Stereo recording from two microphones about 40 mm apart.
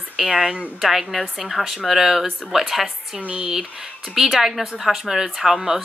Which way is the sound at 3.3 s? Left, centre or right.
Centre.